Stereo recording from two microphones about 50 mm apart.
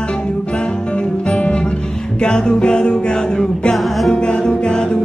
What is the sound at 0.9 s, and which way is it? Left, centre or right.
Music, left.